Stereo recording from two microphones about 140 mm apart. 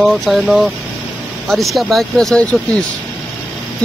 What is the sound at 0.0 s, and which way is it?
Speech, centre (ahead or behind).